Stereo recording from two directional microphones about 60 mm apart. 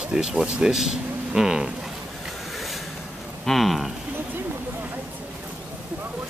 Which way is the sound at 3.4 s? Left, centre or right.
Centre.